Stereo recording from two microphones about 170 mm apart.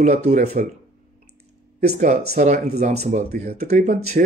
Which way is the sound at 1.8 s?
40° right (ahead or behind).